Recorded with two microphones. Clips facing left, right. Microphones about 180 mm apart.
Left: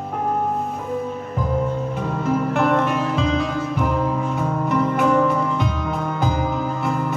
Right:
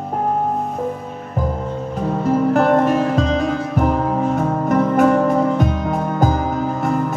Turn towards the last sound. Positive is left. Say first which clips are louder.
# right 3 dB
turn(degrees=-45)  # may be behind; listen again after turning